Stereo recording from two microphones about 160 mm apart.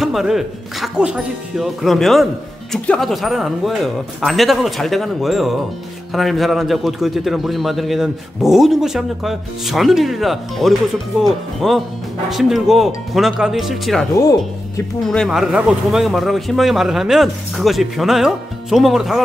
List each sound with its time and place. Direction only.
0.0 s a man's voice: centre (ahead or behind)
14.1 s speech: 20° left (ahead or behind)
15.0 s a man's voice: centre (ahead or behind)